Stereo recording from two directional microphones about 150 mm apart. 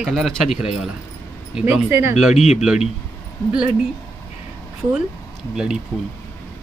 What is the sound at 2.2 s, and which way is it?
Speech, 5° right (ahead or behind).